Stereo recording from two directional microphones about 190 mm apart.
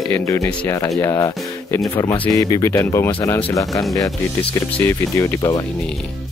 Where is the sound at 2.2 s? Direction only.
15° left (ahead or behind).